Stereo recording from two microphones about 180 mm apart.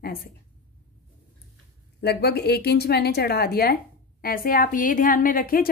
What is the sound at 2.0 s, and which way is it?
A woman's voice, 65° left (ahead or behind).